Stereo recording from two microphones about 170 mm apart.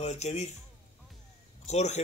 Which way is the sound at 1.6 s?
40° left (ahead or behind).